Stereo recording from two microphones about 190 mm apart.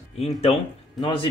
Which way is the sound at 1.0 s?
25° left (ahead or behind).